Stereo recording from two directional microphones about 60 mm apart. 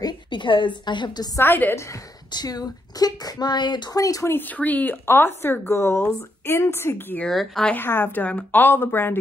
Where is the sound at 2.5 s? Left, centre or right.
Left.